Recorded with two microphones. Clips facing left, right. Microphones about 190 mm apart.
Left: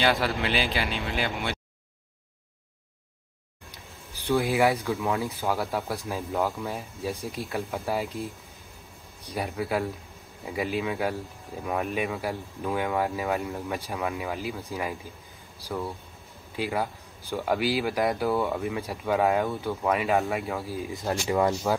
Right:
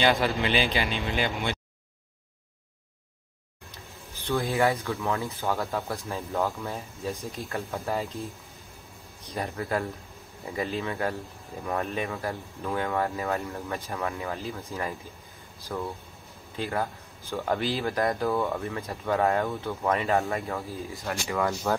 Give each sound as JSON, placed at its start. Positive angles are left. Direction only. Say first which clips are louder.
{"t": 0.0, "sound": "speech", "louder": "right 1 dB", "side_deg": 5}
{"t": 4.3, "sound": "speech", "louder": "left 2 dB", "side_deg": 15}
{"t": 6.3, "sound": "speech", "louder": "left 1 dB", "side_deg": 0}
{"t": 6.7, "sound": "speech", "louder": "left 1 dB", "side_deg": 15}
{"t": 9.3, "sound": "speech", "louder": "left 1 dB", "side_deg": 10}
{"t": 16.5, "sound": "speech", "louder": "left 1 dB", "side_deg": 10}
{"t": 21.0, "sound": "speech", "louder": "left 4 dB", "side_deg": 25}